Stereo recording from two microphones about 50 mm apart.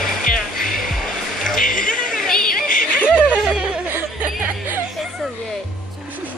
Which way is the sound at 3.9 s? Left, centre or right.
Right.